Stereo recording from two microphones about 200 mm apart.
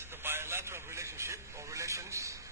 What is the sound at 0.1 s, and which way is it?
Radio, 10° right (ahead or behind).